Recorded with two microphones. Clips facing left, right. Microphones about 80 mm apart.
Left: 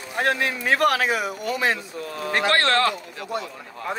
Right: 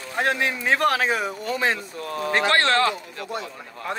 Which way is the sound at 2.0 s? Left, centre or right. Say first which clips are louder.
Right 2 dB; right.